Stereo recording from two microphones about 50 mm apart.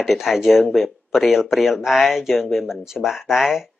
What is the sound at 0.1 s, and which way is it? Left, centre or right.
Speech, centre.